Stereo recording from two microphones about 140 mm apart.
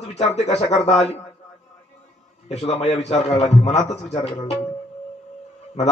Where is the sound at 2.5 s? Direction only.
50° left (ahead or behind).